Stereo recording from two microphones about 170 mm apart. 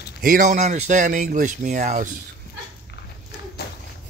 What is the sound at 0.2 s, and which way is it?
Speech, 50° right (ahead or behind).